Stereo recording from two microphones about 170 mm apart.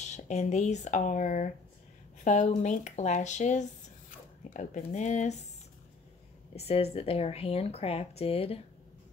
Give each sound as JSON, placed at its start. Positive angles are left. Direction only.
{"t": 0.0, "sound": "speech", "side_deg": 40}
{"t": 6.5, "sound": "speech", "side_deg": 35}